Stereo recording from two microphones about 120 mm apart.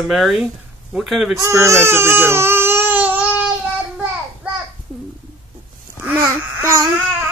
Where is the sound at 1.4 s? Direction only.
25° right (ahead or behind).